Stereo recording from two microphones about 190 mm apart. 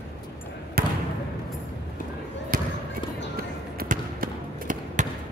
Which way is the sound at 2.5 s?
50° right (ahead or behind).